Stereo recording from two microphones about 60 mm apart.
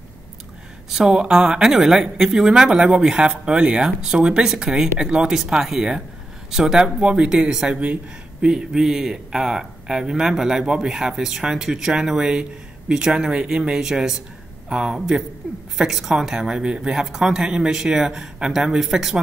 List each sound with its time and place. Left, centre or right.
0.8 s a woman's voice: centre